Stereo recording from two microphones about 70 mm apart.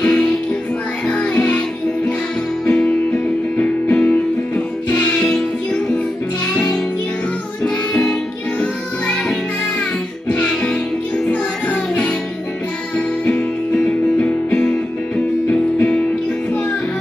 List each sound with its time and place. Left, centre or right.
0.0 s music: centre
2.6 s music: centre
3.5 s music: left
10.5 s music: centre
13.3 s music: centre